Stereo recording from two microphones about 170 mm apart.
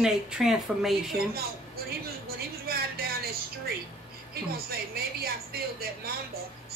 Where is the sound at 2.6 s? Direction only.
65° right (ahead or behind).